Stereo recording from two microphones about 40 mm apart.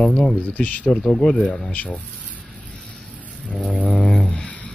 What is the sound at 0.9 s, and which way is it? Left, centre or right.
Speech, centre.